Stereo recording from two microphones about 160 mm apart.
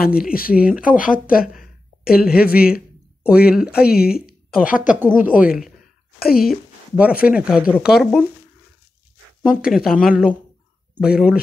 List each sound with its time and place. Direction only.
0.0 s a woman's voice: 65° left (ahead or behind)
3.3 s speech: 5° right (ahead or behind)
3.8 s a woman's voice: 75° left (ahead or behind)
4.6 s speech: 55° left (ahead or behind)
4.9 s speech: 10° right (ahead or behind)
9.4 s speech: 55° left (ahead or behind)
10.0 s speech: 5° right (ahead or behind)